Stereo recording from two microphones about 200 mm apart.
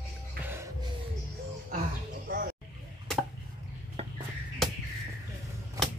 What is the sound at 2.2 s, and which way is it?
Roaring cats, 45° right (ahead or behind).